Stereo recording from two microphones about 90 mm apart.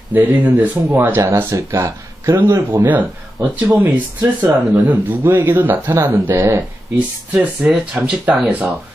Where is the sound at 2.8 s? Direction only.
20° right (ahead or behind).